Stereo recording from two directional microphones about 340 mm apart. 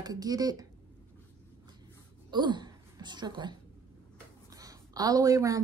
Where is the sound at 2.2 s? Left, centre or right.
Centre.